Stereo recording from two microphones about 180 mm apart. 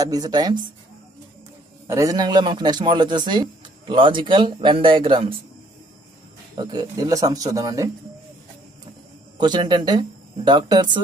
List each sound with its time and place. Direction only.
0.0 s speech: 20° right (ahead or behind)
1.9 s speech: 20° right (ahead or behind)
6.5 s speech: 25° right (ahead or behind)
9.4 s speech: 25° right (ahead or behind)